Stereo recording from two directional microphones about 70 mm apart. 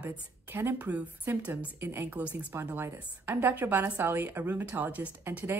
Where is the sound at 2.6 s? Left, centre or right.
Right.